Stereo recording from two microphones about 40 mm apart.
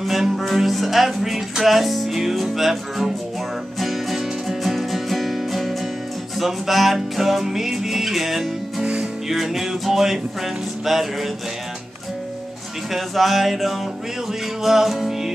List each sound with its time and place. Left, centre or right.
0.0 s speech: centre
3.8 s music: centre
6.3 s speech: centre
12.9 s speech: centre
14.6 s music: centre